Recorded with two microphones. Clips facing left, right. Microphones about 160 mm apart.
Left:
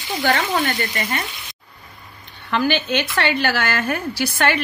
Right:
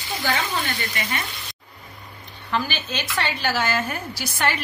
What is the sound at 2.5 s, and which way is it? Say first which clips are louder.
A woman's voice: left 7 dB; 65° left (ahead or behind).